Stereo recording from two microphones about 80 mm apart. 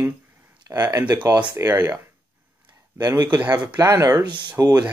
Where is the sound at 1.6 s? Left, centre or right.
Right.